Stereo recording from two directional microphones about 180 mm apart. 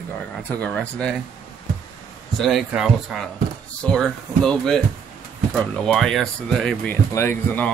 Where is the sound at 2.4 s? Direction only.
Centre (ahead or behind).